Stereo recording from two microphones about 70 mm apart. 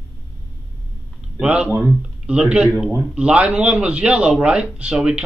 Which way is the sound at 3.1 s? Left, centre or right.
Centre.